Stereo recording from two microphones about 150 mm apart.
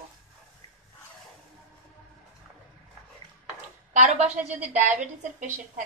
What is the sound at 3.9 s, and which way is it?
A woman's voice, 55° right (ahead or behind).